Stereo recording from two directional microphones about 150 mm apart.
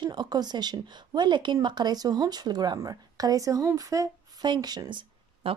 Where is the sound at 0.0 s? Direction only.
30° right (ahead or behind).